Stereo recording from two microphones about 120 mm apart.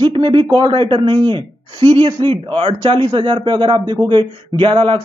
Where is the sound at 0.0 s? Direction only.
40° right (ahead or behind).